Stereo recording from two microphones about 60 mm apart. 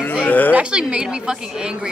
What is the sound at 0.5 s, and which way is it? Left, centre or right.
Speech, centre.